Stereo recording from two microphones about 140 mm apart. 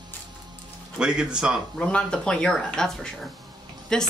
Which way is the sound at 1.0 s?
5° right (ahead or behind).